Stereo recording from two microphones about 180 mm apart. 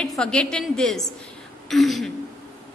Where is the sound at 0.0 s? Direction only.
5° left (ahead or behind).